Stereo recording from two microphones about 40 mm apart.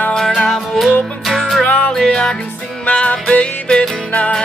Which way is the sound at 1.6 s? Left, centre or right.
Left.